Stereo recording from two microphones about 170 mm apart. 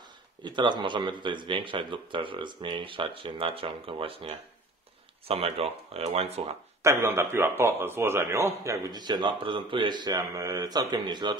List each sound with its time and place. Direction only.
0.4 s speech: 25° right (ahead or behind)
6.8 s speech: 15° right (ahead or behind)